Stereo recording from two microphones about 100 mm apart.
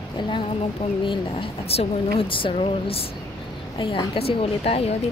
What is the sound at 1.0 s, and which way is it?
Speech, 60° left (ahead or behind).